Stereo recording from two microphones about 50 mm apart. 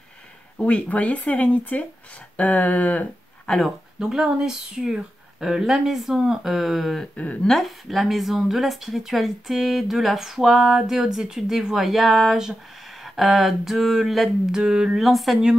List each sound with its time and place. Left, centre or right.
0.6 s speech: left
3.5 s speech: centre
4.0 s speech: centre
14.5 s speech: centre
15.0 s speech: centre